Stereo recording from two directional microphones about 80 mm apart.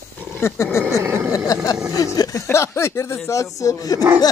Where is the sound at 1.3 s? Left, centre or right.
Left.